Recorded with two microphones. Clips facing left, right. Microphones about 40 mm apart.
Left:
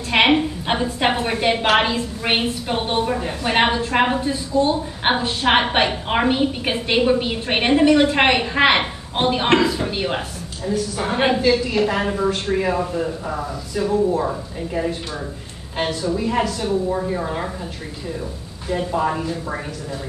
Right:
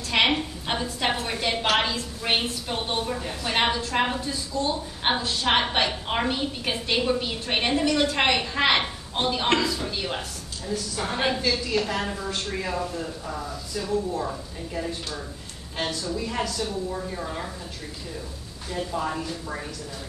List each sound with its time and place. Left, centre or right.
0.1 s a woman's voice: left
18.7 s a woman's voice: left